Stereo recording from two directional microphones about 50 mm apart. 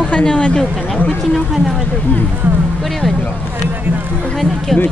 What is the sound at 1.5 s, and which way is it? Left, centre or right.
Speech, centre.